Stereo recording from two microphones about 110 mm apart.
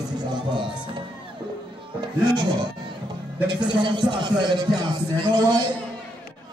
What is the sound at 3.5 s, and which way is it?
Speech, 45° right (ahead or behind).